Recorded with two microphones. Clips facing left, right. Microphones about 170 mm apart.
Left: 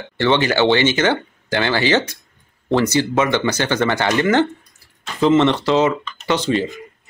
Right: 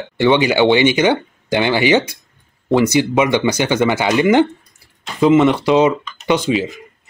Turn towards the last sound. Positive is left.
turn(degrees=0)  # may be behind; listen again after turning